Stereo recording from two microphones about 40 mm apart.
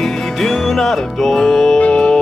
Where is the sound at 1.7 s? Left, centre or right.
Left.